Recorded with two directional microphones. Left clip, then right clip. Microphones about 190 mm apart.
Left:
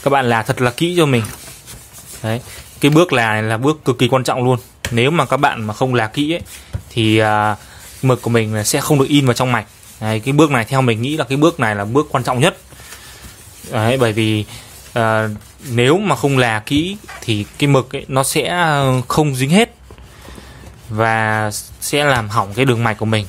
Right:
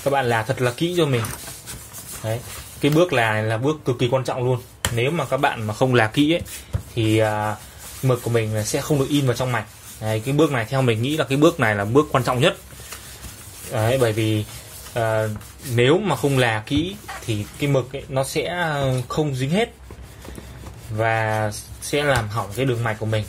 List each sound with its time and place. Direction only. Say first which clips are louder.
0.0 s speech: left 6 dB; 40° left (ahead or behind)
2.2 s speech: left 5 dB; 45° left (ahead or behind)
5.4 s speech: left 4 dB; 30° left (ahead or behind); by 6.4 s 5° left (ahead or behind)
7.0 s speech: left 7 dB; 45° left (ahead or behind); by 12.4 s 15° left (ahead or behind)
13.7 s speech: left 4 dB; 40° left (ahead or behind)
20.9 s speech: left 6 dB; 45° left (ahead or behind)